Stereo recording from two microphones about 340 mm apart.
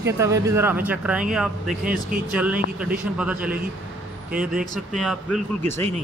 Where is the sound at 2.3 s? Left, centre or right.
Centre.